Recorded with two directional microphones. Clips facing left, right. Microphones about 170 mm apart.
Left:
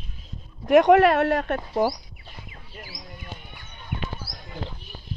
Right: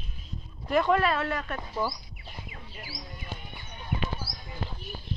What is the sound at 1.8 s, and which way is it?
Speech, 85° left.